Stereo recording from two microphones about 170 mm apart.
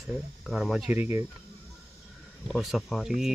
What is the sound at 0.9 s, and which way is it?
Speech, 15° right (ahead or behind).